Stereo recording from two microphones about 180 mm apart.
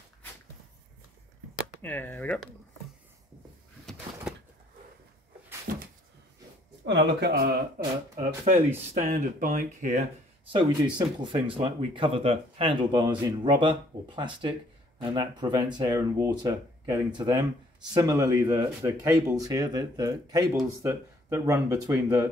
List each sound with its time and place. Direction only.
1.8 s speech: 10° left (ahead or behind)
3.8 s door: 5° right (ahead or behind)
5.7 s cupboard open or close: 50° right (ahead or behind)
6.8 s speech: 75° right (ahead or behind)
8.2 s speech: 40° right (ahead or behind)
10.5 s speech: 25° right (ahead or behind)